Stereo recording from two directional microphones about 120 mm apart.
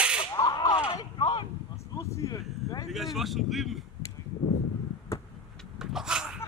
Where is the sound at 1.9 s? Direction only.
25° left (ahead or behind).